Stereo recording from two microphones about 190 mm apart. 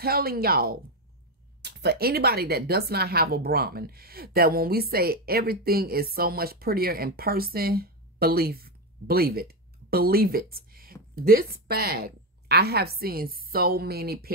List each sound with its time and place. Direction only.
0.0 s a woman's voice: 50° right (ahead or behind)